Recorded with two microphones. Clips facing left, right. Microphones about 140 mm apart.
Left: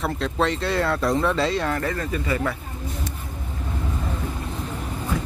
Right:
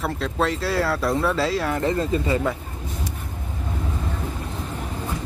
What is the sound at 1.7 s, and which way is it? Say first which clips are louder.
Speech: right 3 dB; 20° right (ahead or behind).